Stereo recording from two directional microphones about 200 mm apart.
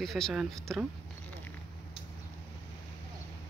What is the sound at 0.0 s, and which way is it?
Speech, centre (ahead or behind).